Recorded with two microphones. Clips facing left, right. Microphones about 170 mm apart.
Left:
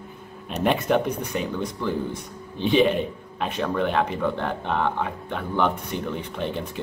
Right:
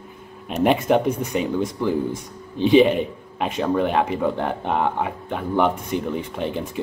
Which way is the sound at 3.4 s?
15° right (ahead or behind).